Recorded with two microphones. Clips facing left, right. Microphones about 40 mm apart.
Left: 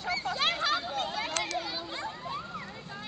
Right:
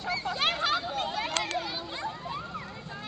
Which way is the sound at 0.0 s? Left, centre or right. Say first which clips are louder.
Right 1 dB; centre.